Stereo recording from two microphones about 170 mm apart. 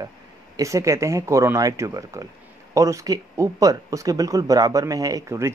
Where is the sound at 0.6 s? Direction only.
20° right (ahead or behind).